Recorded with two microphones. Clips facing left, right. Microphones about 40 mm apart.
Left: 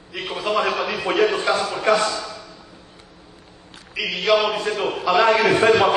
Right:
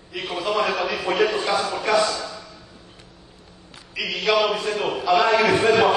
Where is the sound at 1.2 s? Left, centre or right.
Left.